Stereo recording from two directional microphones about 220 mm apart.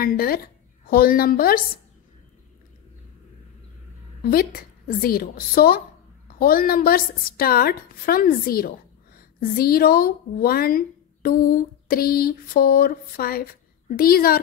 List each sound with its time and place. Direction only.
0.0 s a woman's voice: 40° left (ahead or behind)
4.2 s a woman's voice: 45° left (ahead or behind)